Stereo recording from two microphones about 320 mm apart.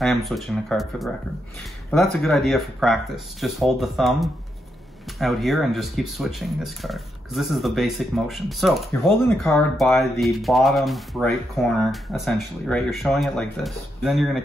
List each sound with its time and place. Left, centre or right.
0.0 s speech: centre